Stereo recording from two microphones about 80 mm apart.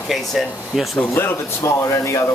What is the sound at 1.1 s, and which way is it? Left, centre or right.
Speech, left.